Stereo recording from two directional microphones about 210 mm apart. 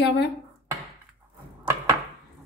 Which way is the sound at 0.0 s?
55° left (ahead or behind).